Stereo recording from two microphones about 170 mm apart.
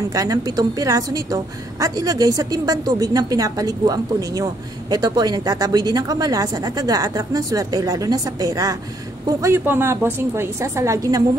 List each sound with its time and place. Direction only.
0.1 s a woman's voice: 20° right (ahead or behind)